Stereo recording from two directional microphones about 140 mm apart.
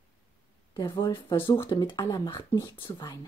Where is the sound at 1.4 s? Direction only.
15° left (ahead or behind).